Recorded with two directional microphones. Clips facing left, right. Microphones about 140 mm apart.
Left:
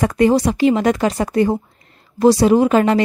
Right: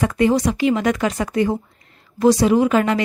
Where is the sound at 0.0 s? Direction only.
40° left (ahead or behind).